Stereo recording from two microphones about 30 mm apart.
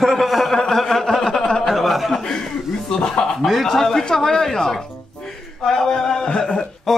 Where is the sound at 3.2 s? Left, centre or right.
Left.